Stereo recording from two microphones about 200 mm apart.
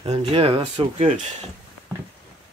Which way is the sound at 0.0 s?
30° right (ahead or behind).